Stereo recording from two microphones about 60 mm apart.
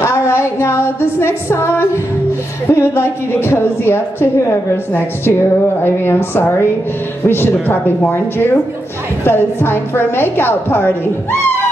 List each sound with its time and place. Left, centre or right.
0.0 s music: left
2.7 s a woman's voice: left